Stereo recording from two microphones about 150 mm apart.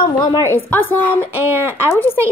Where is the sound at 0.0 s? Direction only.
30° left (ahead or behind).